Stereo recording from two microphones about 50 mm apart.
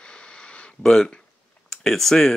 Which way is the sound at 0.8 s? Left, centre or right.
Centre.